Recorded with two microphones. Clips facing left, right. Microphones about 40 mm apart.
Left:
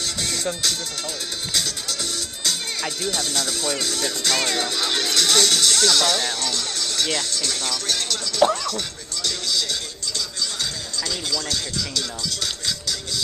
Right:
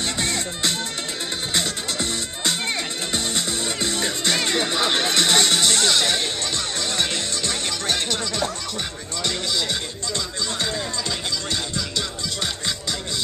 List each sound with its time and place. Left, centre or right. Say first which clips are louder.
0.0 s music: right 2 dB; right
1.5 s music: right 1 dB; right
4.5 s speech: right 2 dB; right
8.7 s music: right 1 dB; right